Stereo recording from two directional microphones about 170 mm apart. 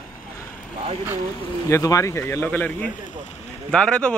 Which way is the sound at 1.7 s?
20° left (ahead or behind).